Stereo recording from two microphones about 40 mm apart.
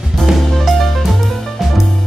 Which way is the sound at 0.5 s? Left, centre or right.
Centre.